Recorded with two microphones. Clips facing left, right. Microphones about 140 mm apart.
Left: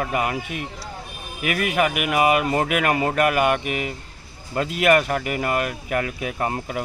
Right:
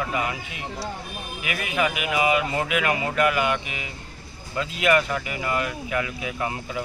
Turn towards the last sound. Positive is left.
turn(degrees=45)  # may be behind; listen again after turning